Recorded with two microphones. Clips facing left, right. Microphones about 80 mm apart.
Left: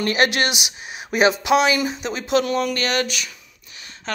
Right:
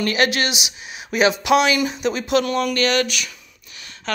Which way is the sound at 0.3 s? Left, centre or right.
Left.